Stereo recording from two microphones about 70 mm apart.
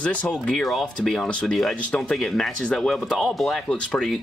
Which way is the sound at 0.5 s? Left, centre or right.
Centre.